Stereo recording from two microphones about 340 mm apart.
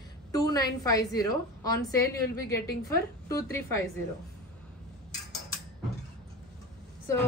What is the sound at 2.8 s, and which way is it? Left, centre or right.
Speech, centre.